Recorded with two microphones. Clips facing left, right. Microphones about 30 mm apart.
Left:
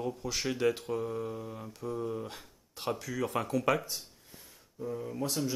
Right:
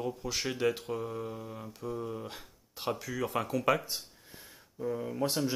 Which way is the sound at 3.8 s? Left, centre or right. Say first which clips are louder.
Right 1 dB; right.